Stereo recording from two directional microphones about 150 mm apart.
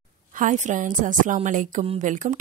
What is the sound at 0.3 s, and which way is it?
A woman's voice, 60° right (ahead or behind).